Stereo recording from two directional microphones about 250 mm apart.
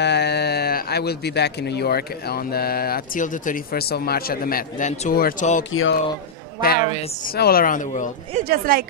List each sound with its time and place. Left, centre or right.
0.0 s speech: left
5.6 s speech: left
6.6 s speech: left
8.3 s speech: right